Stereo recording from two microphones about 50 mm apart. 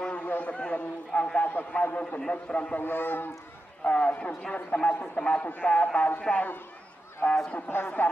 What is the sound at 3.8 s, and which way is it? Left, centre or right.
A man's voice, left.